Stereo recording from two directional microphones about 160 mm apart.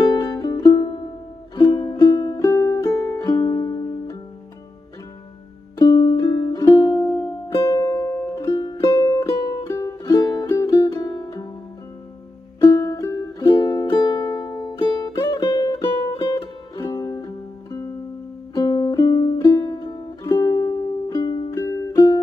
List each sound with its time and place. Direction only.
0.0 s music: 25° left (ahead or behind)
5.8 s music: 25° left (ahead or behind)
12.6 s music: 20° left (ahead or behind)